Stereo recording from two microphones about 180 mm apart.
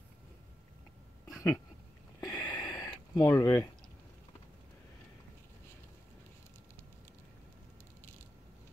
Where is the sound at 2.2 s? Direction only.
20° left (ahead or behind).